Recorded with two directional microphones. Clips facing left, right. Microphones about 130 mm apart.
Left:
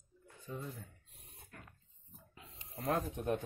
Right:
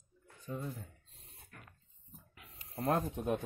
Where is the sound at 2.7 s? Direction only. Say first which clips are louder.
Right 3 dB; 25° right (ahead or behind).